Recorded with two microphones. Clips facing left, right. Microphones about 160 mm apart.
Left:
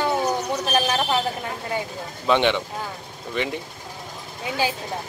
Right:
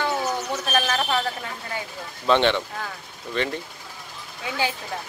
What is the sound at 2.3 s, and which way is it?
Speech, 15° left (ahead or behind).